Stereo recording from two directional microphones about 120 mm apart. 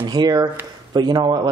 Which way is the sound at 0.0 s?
35° right (ahead or behind).